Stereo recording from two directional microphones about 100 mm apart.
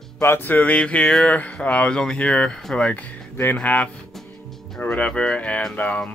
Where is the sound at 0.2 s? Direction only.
20° left (ahead or behind).